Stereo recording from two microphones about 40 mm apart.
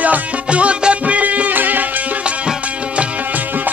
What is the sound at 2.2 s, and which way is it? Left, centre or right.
Music, right.